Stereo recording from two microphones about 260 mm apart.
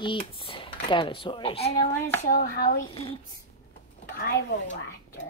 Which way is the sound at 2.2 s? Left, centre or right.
Left.